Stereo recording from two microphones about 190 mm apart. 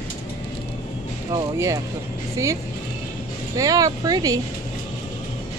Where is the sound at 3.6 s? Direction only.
20° right (ahead or behind).